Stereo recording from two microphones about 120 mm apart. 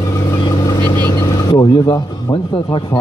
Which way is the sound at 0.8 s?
15° left (ahead or behind).